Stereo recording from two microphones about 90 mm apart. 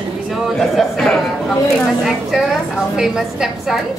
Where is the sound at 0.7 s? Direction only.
Centre (ahead or behind).